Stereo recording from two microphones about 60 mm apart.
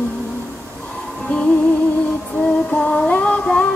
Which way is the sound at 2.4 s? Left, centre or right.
Left.